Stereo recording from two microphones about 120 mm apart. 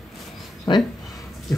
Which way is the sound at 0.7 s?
45° left (ahead or behind).